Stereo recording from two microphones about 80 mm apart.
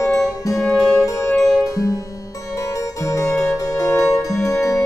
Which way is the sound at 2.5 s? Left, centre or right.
Left.